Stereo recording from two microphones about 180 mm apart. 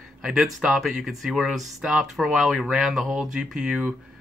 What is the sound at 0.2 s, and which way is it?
Speech, 5° right (ahead or behind).